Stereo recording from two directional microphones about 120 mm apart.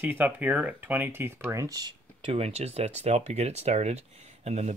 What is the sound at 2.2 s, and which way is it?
Speech, 55° right (ahead or behind).